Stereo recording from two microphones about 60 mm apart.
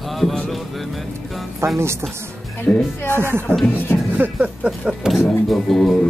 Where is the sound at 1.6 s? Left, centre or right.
Right.